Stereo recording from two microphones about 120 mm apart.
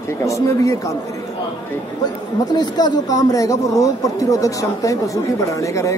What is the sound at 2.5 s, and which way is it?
Speech, 35° left (ahead or behind).